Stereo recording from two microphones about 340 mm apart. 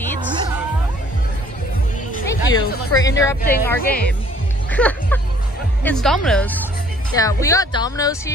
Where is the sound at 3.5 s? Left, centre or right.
Left.